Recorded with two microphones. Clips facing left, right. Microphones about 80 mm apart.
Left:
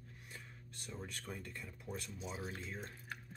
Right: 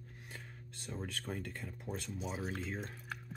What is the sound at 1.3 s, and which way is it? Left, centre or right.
Speech, right.